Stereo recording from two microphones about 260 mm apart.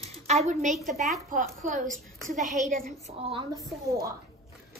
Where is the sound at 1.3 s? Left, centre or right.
Right.